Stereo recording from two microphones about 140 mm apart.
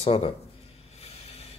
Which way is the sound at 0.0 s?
45° left (ahead or behind).